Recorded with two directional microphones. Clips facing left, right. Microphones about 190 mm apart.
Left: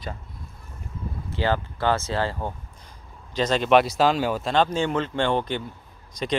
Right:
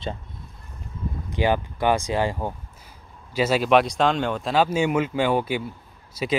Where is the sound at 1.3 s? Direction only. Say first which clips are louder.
Right 2 dB; 15° right (ahead or behind); by 4.5 s 5° left (ahead or behind).